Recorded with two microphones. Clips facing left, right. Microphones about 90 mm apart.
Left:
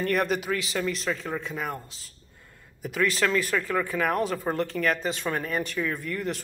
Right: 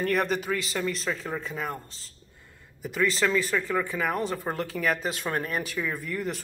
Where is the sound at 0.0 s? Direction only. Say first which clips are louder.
Even; centre (ahead or behind).